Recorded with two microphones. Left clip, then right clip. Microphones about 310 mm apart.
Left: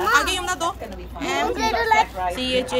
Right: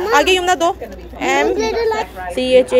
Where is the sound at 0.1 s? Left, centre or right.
Centre.